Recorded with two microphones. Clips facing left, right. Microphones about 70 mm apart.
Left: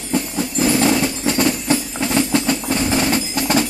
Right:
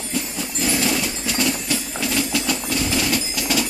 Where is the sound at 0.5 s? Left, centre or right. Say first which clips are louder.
Left 6 dB; left.